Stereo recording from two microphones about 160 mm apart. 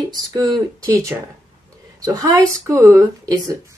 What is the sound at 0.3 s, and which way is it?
Speech, 20° right (ahead or behind).